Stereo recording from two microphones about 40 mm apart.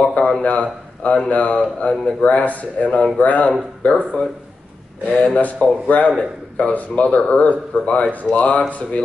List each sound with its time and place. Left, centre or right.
0.0 s a sound: left
0.4 s a man's voice: left
5.0 s a man's voice: left